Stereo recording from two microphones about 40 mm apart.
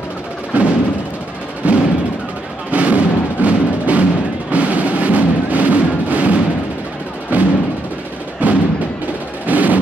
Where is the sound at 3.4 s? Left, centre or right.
Right.